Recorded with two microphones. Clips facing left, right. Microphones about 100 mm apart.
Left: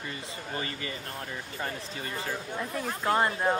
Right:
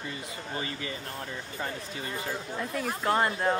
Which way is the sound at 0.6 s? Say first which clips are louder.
Even; 40° left (ahead or behind).